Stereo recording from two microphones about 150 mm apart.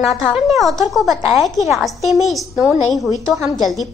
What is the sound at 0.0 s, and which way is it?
Speech, centre (ahead or behind).